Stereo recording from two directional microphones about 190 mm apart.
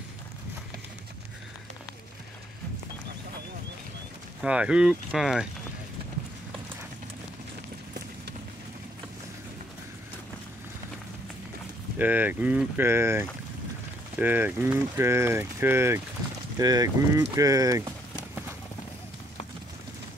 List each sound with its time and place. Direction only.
4.4 s speech: 5° right (ahead or behind)
12.0 s speech: 10° right (ahead or behind)